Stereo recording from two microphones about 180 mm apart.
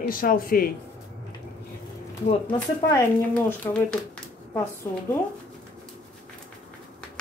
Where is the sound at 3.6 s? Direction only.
15° left (ahead or behind).